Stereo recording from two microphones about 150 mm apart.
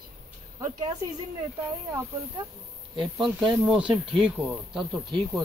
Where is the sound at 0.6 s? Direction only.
25° right (ahead or behind).